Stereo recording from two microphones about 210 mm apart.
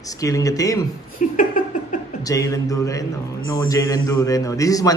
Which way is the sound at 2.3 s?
15° left (ahead or behind).